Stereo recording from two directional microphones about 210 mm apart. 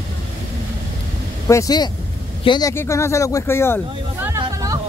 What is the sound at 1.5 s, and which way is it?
Speech, 15° left (ahead or behind).